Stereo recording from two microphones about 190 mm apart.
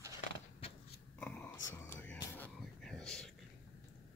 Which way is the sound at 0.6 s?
30° left (ahead or behind).